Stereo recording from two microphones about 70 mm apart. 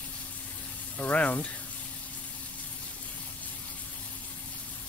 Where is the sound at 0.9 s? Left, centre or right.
Left.